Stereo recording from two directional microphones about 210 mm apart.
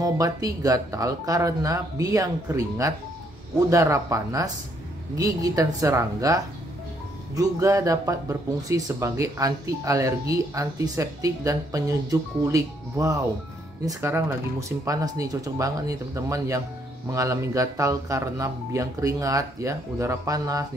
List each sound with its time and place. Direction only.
0.0 s speech: 15° right (ahead or behind)